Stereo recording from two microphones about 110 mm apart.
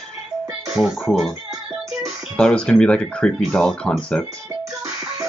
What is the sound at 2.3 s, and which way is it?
Speech, 10° left (ahead or behind).